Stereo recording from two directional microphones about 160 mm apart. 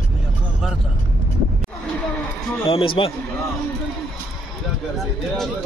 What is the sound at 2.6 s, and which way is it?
Speech, 35° left (ahead or behind).